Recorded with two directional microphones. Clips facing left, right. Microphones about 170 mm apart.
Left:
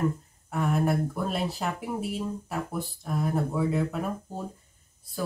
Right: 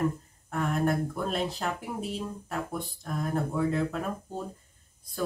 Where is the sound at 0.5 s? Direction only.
5° left (ahead or behind).